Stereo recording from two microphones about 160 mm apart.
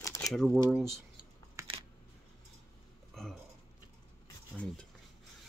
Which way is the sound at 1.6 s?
20° right (ahead or behind).